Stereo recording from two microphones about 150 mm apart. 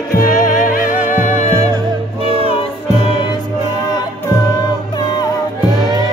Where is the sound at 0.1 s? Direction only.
70° left (ahead or behind).